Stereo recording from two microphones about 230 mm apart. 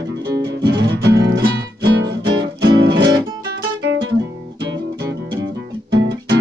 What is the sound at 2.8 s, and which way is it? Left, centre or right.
Music, right.